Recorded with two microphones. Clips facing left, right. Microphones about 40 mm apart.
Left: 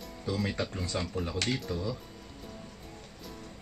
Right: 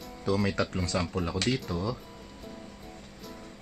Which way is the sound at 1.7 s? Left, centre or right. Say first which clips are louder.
Right 2 dB; right.